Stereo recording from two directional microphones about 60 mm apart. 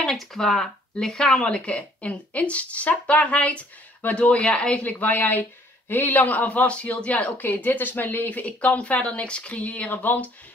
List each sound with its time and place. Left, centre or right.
0.0 s speech: centre; by 10.3 s left